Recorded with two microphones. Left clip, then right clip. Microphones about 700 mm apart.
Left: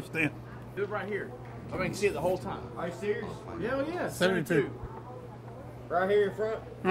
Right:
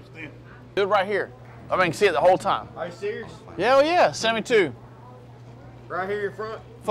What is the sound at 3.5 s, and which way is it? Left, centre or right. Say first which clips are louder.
Speech: right 15 dB; right.